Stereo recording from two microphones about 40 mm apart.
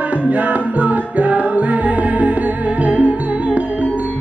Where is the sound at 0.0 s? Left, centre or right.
Right.